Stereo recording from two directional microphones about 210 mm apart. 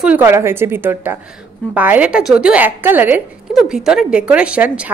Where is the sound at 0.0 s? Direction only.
10° right (ahead or behind).